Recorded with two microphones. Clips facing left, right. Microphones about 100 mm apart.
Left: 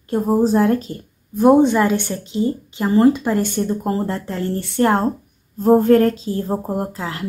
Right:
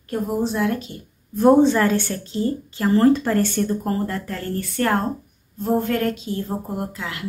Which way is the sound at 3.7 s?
25° left (ahead or behind).